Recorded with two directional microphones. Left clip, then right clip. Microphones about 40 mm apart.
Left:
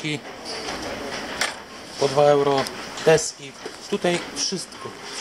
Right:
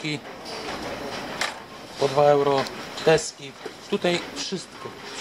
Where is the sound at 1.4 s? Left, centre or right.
Centre.